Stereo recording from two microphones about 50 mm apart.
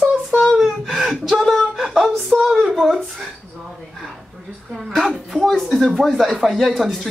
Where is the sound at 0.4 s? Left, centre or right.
Centre.